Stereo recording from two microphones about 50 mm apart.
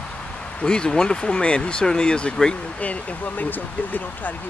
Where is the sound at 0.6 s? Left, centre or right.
Centre.